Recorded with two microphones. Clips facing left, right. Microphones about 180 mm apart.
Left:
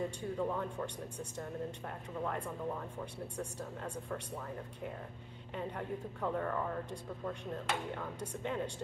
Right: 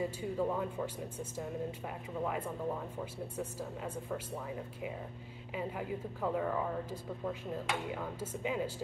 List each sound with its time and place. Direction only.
0.0 s speech: 5° right (ahead or behind)